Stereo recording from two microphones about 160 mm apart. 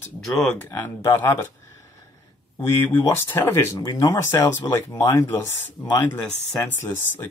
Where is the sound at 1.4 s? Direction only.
15° left (ahead or behind).